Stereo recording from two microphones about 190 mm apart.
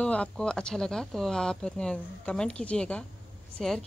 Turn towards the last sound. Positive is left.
turn(degrees=0)  # may be behind; listen again after turning